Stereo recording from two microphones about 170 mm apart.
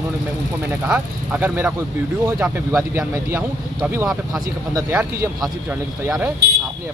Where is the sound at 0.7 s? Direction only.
10° right (ahead or behind).